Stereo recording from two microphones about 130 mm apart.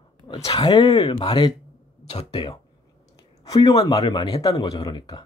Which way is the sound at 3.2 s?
30° left (ahead or behind).